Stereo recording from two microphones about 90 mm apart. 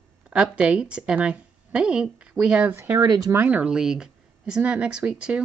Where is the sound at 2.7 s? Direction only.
25° right (ahead or behind).